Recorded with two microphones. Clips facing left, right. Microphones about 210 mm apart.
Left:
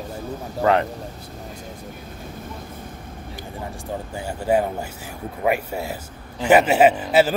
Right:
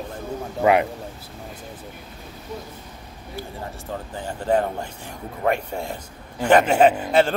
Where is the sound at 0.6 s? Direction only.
10° right (ahead or behind).